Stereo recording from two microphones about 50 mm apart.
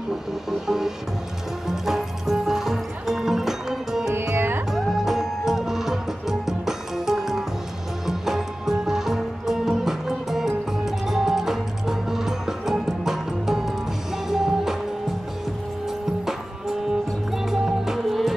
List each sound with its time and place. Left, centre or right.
0.5 s music: centre
4.1 s music: right
4.4 s music: right
4.6 s music: centre
17.3 s music: centre